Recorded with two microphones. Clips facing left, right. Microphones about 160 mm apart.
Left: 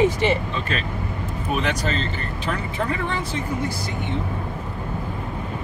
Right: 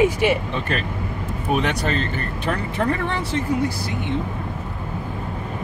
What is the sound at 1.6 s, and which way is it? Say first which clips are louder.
Speech: right 1 dB; 55° right (ahead or behind).